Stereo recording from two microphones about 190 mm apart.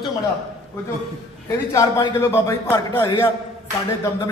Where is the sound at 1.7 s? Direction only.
15° left (ahead or behind).